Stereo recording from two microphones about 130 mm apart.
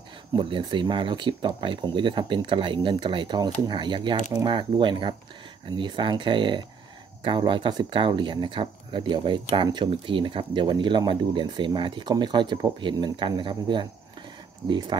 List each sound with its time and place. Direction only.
0.4 s speech: 40° right (ahead or behind)